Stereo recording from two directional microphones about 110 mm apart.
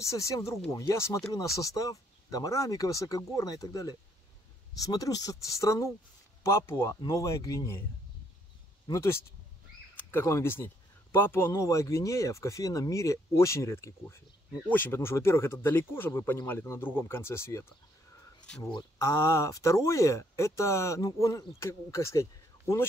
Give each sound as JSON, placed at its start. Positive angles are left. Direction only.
{"t": 0.0, "sound": "speech", "side_deg": 30}
{"t": 8.8, "sound": "speech", "side_deg": 25}
{"t": 18.9, "sound": "speech", "side_deg": 25}